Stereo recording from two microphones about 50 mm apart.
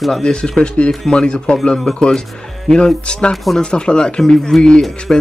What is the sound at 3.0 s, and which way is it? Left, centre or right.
Speech, centre.